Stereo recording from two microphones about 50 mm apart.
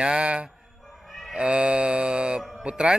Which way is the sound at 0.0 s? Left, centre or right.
Right.